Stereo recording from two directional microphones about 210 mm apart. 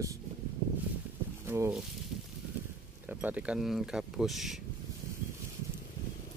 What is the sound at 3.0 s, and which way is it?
Speech, 5° right (ahead or behind).